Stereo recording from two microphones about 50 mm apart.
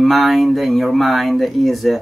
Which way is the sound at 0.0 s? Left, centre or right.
Centre.